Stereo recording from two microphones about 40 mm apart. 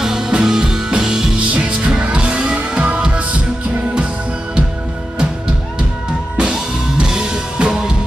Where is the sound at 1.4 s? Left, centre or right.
Right.